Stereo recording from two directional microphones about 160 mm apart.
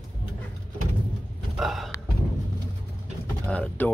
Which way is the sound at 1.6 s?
Centre (ahead or behind).